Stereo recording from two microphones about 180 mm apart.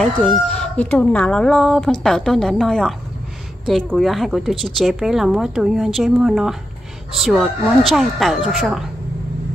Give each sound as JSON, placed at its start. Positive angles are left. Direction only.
{"t": 0.0, "sound": "speech", "side_deg": 5}